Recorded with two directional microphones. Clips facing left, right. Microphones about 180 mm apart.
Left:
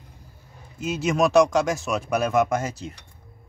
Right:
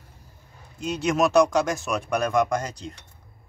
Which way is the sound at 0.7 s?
5° left (ahead or behind).